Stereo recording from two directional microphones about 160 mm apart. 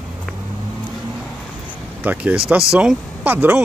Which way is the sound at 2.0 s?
5° right (ahead or behind).